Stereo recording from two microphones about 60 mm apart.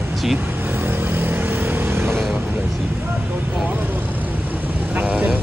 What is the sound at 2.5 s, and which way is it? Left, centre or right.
Speech, right.